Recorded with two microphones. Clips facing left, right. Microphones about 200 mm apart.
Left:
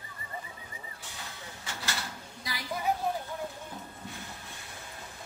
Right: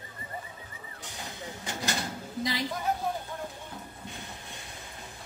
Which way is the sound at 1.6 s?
20° right (ahead or behind).